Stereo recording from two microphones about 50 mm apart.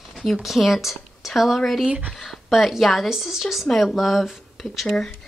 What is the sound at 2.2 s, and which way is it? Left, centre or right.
Speech, centre.